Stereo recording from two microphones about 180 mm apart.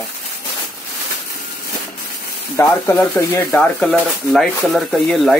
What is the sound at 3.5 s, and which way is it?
Speech, centre (ahead or behind).